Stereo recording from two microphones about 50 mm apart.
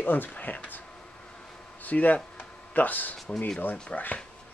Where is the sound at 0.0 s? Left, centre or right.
Left.